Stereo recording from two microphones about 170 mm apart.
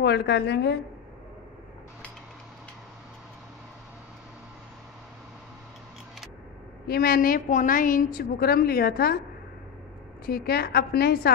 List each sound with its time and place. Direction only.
0.0 s a woman's voice: 80° left
6.9 s a woman's voice: 60° left (ahead or behind)
10.2 s a woman's voice: 65° left (ahead or behind)